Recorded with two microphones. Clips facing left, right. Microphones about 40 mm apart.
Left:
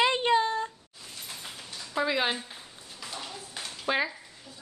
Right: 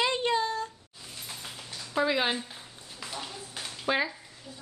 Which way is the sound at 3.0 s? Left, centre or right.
Centre.